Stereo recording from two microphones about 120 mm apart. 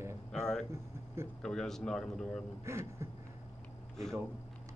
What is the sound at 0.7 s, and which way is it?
Speech, 20° right (ahead or behind).